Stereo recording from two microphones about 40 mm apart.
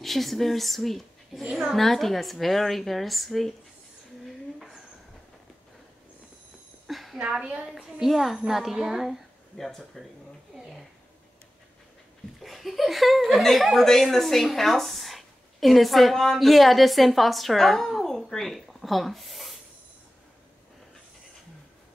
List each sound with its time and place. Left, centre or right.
0.0 s speech: centre
1.4 s a woman's voice: centre
1.8 s a woman's voice: centre
4.6 s a sound: centre
6.9 s a sound: centre
7.2 s a woman's voice: right
7.6 s a woman's voice: centre
9.6 s a woman's voice: centre
12.4 s a woman's voice: centre